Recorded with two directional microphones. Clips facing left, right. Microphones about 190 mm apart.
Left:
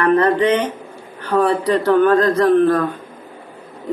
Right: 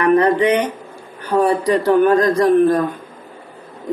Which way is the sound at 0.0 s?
15° right (ahead or behind).